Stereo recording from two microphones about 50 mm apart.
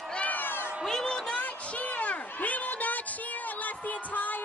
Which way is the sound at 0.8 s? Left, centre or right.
Centre.